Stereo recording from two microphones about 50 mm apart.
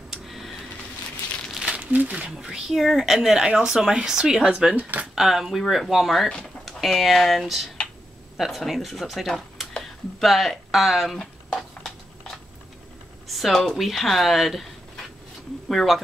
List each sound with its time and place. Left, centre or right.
0.1 s a sound: centre
1.8 s speech: right
2.3 s speech: centre
11.1 s a sound: centre
13.3 s speech: centre
15.7 s speech: centre